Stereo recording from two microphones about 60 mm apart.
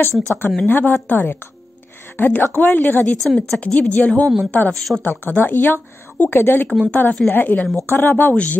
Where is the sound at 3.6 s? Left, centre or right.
Left.